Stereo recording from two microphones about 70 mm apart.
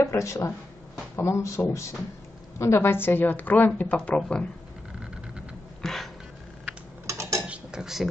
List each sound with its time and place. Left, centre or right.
0.0 s a woman's voice: left; by 4.2 s centre
5.8 s a sound: centre
7.1 s mechanisms: right
7.4 s mechanisms: centre